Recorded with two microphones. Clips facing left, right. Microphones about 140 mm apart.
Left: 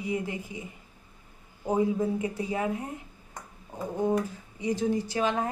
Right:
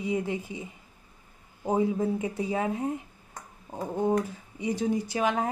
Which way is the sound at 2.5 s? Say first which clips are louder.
Right 2 dB; 25° right (ahead or behind).